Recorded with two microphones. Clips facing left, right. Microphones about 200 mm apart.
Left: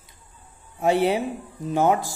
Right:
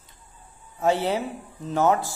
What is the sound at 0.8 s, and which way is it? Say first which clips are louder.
Speech: left 3 dB; 15° left (ahead or behind).